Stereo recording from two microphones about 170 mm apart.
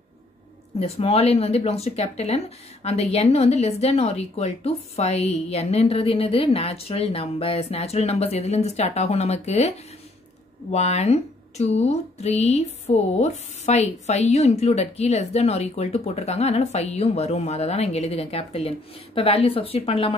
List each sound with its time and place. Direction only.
0.7 s speech: 35° left (ahead or behind)
10.7 s speech: 40° left (ahead or behind)